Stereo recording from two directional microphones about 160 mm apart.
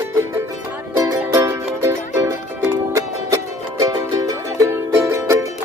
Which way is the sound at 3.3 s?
20° right (ahead or behind).